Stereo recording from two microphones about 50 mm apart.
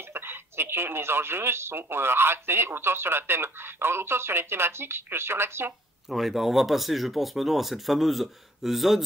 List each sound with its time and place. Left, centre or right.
0.1 s speech: right
6.0 s speech: centre